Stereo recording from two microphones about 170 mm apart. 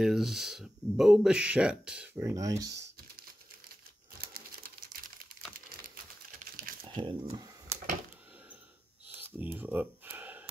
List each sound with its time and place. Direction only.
0.0 s speech: centre (ahead or behind); by 2.7 s 20° right (ahead or behind)
6.9 s speech: 30° right (ahead or behind)
9.4 s a sound: 10° right (ahead or behind)